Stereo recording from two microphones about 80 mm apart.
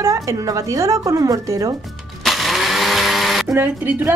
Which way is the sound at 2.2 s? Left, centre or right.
Centre.